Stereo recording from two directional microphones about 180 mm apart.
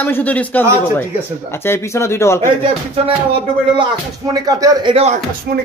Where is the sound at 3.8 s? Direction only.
25° right (ahead or behind).